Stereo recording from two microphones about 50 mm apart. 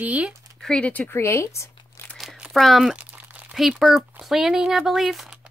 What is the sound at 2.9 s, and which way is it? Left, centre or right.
Crumpling, right.